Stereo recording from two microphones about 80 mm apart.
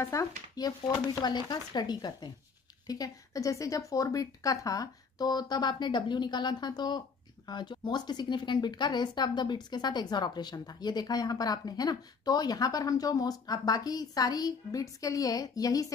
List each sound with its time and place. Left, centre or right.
0.0 s speech: left
0.6 s speech: left
2.9 s speech: left